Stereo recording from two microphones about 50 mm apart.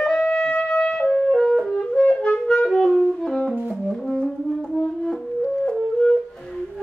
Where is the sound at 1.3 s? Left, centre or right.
Centre.